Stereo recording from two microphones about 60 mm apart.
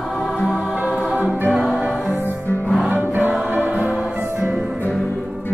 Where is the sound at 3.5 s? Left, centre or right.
Right.